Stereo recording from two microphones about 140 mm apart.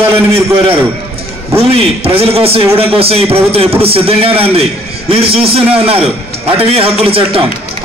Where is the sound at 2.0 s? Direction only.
45° right (ahead or behind).